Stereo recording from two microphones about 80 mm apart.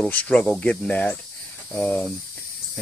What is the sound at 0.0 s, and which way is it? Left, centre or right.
Speech, centre.